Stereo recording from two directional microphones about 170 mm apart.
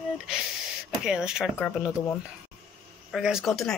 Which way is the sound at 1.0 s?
5° right (ahead or behind).